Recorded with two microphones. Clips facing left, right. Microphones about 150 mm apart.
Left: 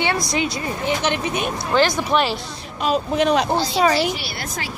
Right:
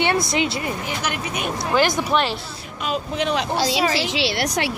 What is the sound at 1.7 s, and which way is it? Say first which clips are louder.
Speech: left 1 dB; 15° right (ahead or behind).